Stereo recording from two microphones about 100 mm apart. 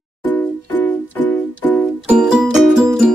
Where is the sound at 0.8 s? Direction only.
15° left (ahead or behind).